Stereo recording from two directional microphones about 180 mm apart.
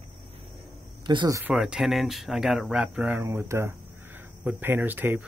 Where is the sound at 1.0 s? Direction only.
20° right (ahead or behind).